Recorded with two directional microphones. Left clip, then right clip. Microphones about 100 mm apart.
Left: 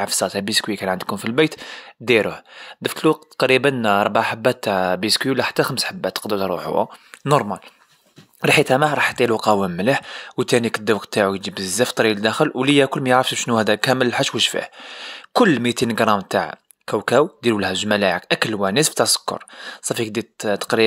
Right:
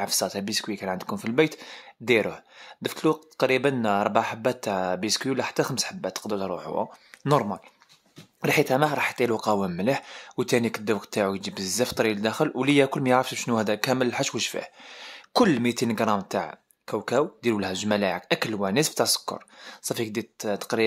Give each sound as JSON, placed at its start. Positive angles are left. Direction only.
{"t": 0.0, "sound": "speech", "side_deg": 35}
{"t": 10.3, "sound": "speech", "side_deg": 30}
{"t": 12.0, "sound": "speech", "side_deg": 40}
{"t": 12.5, "sound": "speech", "side_deg": 25}
{"t": 14.6, "sound": "speech", "side_deg": 30}
{"t": 16.0, "sound": "speech", "side_deg": 45}
{"t": 17.6, "sound": "speech", "side_deg": 30}